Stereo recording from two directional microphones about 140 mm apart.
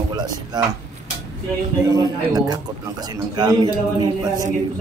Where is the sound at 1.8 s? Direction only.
25° right (ahead or behind).